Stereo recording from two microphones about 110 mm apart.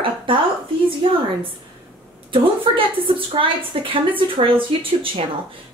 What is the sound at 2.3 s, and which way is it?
A woman's voice, 50° right (ahead or behind).